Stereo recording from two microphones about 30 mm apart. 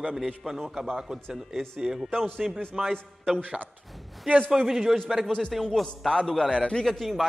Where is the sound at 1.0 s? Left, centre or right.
Centre.